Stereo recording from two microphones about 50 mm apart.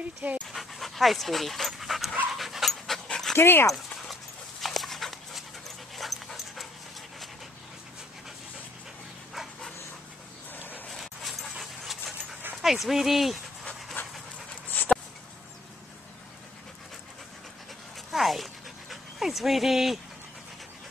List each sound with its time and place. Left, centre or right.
0.5 s dog: centre
3.3 s speech: left
4.1 s dog: centre
10.5 s a sound: left
10.9 s dog: centre
12.6 s speech: centre
14.0 s pant: left
14.8 s a sound: left
18.1 s dog: centre